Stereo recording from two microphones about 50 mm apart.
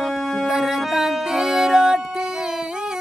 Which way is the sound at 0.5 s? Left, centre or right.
Centre.